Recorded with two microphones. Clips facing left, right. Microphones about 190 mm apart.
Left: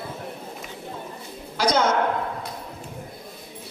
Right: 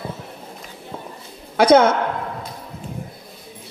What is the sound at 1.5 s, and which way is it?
Speech, 55° right (ahead or behind).